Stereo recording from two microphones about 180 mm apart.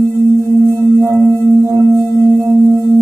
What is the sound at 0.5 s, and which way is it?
Singing bowl, 15° right (ahead or behind).